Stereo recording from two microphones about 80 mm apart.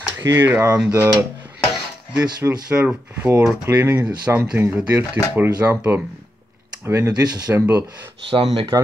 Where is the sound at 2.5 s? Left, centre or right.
Centre.